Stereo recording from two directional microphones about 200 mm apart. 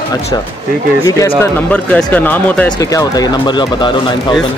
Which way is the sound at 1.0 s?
15° left (ahead or behind).